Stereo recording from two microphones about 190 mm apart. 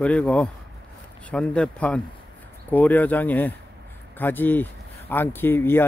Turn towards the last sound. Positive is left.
turn(degrees=10)  # may be behind; listen again after turning